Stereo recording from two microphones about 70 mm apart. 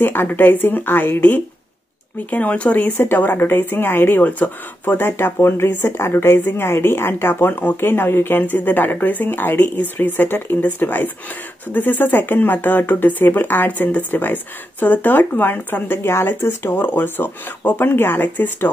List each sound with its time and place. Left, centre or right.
0.0 s a woman's voice: left